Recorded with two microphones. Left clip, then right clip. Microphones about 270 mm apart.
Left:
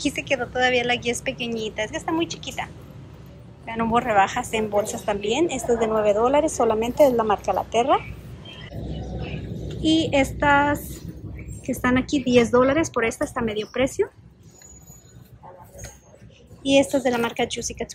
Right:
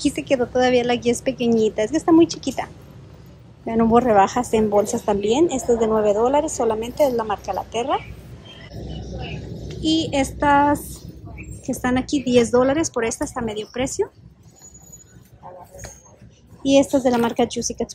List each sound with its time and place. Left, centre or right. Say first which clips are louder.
0.0 s a woman's voice: right 4 dB; centre
9.8 s a woman's voice: left 1 dB; centre
16.6 s a woman's voice: right 2 dB; centre